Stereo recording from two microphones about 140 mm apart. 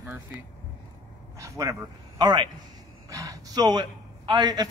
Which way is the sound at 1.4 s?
20° right (ahead or behind).